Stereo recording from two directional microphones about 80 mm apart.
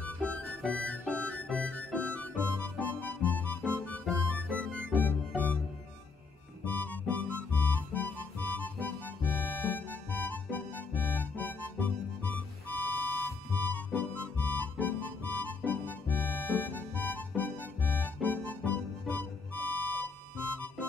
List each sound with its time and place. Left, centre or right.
0.0 s music: centre
6.6 s music: left